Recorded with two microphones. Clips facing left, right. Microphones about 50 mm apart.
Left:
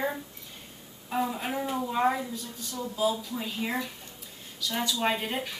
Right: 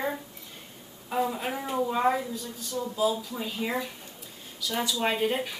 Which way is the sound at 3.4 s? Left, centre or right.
Centre.